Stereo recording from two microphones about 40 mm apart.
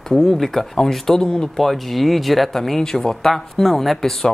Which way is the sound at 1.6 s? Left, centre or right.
Centre.